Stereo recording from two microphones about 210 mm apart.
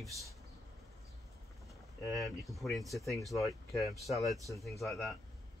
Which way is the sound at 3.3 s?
15° left (ahead or behind).